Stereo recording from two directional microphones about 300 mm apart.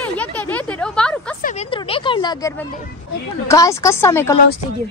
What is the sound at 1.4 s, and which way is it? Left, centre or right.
A child's voice, left.